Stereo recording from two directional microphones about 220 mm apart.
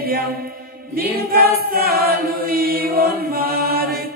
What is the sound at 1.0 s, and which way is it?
Choir, 45° right (ahead or behind).